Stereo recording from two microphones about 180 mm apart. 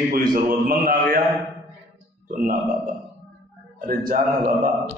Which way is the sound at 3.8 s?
55° right (ahead or behind).